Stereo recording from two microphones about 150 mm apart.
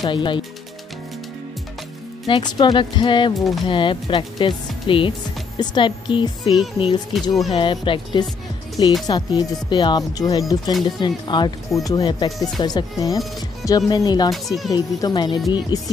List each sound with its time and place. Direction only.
0.0 s speech: 30° left (ahead or behind)
2.2 s speech: 35° left (ahead or behind)
3.3 s speech: centre (ahead or behind)
3.6 s speech: 35° left (ahead or behind)
14.3 s speech: centre (ahead or behind)
14.7 s speech: 25° left (ahead or behind)